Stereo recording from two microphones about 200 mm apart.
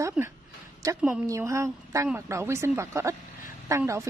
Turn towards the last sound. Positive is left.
turn(degrees=-15)  # may be behind; listen again after turning